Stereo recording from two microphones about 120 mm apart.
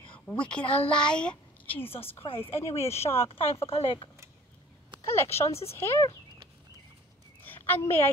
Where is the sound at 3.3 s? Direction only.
55° left (ahead or behind).